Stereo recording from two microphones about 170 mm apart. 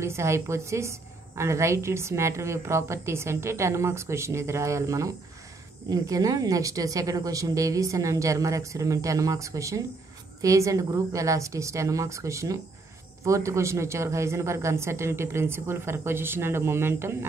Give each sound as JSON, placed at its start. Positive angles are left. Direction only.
{"t": 0.0, "sound": "a woman's voice", "side_deg": -15}